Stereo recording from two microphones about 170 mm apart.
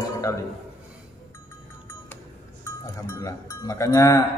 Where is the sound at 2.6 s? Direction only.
20° left (ahead or behind).